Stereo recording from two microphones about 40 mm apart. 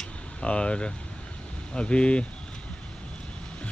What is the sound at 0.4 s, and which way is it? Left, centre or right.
Speech, left.